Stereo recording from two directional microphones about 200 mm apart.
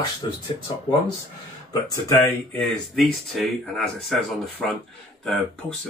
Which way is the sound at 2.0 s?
15° left (ahead or behind).